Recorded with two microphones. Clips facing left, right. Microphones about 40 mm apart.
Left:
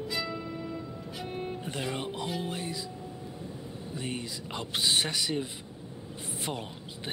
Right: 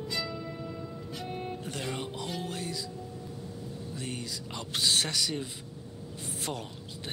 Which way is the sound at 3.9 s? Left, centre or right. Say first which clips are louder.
Left 3 dB; centre.